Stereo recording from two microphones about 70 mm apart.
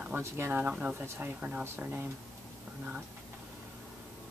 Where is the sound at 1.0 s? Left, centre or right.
Right.